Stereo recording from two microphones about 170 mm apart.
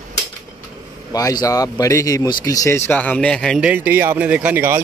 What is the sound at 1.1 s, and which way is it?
Speech, 20° left (ahead or behind).